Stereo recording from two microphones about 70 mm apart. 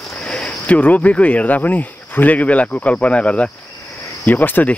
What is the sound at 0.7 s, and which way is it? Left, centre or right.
Speech, left.